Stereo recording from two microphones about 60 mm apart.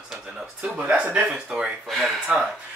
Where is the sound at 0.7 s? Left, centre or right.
Centre.